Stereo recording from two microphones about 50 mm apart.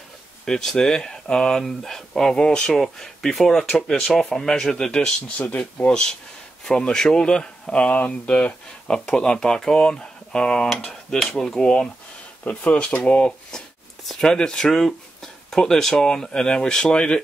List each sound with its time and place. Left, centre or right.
0.5 s speech: centre
5.4 s speech: left
5.9 s speech: centre
7.7 s speech: left
12.4 s speech: left